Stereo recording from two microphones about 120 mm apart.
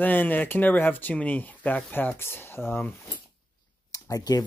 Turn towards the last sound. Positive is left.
turn(degrees=30)  # may be behind; listen again after turning